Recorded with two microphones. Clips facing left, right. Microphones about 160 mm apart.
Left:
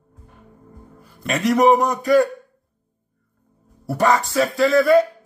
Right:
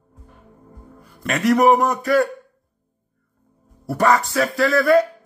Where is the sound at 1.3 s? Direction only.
20° left (ahead or behind).